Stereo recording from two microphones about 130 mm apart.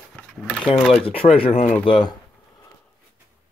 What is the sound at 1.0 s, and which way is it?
Speech, 45° left (ahead or behind).